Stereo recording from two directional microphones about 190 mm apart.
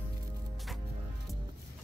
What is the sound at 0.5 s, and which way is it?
Music, centre (ahead or behind).